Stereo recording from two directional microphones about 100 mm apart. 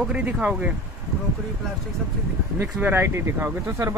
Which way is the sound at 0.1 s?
15° right (ahead or behind).